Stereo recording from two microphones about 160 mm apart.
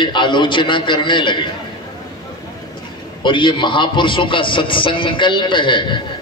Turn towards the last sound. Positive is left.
turn(degrees=30)  # may be behind; listen again after turning